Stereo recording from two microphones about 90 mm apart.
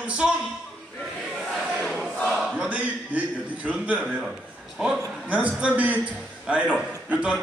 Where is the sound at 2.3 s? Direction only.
Centre (ahead or behind).